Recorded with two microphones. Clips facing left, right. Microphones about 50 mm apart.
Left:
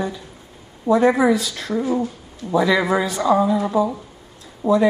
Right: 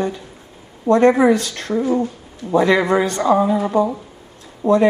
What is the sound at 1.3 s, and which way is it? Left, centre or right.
Speech, right.